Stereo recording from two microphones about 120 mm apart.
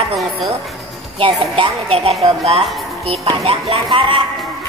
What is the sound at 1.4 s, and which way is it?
A woman's voice, 55° right (ahead or behind).